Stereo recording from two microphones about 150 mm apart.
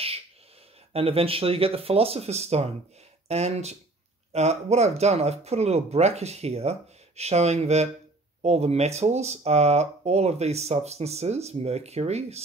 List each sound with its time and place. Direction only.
0.9 s speech: 40° right (ahead or behind)